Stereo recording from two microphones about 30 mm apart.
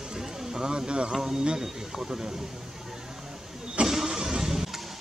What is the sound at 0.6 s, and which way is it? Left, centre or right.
Speech, right.